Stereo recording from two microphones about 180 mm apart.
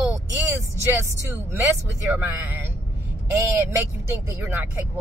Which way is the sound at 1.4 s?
10° right (ahead or behind).